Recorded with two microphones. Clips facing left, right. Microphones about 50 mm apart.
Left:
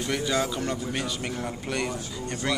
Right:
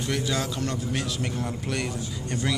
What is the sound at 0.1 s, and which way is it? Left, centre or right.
A man's voice, centre.